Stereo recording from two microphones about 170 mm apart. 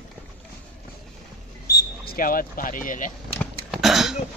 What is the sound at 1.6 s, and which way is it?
Speech, 65° left (ahead or behind).